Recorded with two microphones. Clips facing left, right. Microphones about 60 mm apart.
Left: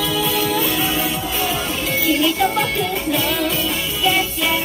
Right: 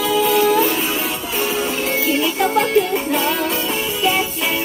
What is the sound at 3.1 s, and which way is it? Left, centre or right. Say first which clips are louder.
Music: right 1 dB; right.